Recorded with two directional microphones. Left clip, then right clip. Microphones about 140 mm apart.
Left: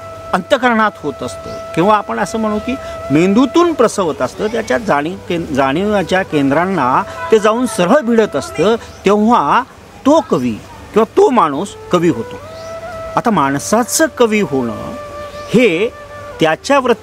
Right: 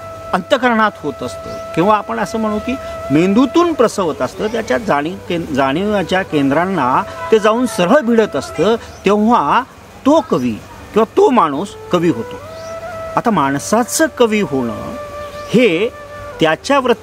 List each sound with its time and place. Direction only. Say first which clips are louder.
0.3 s speech: left 1 dB; 15° left (ahead or behind)